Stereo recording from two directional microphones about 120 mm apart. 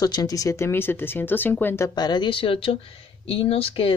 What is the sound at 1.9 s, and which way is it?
Speech, 40° left (ahead or behind).